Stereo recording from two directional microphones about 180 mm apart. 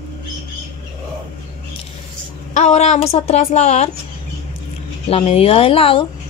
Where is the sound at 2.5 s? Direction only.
40° left (ahead or behind).